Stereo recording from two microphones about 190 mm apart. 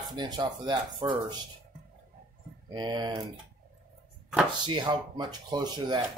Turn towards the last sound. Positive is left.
turn(degrees=-25)  # may be behind; listen again after turning